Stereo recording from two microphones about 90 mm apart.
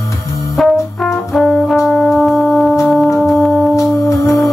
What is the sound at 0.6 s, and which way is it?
Brass instrument, centre (ahead or behind).